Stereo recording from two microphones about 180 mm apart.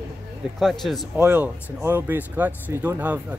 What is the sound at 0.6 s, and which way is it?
A man's voice, centre (ahead or behind).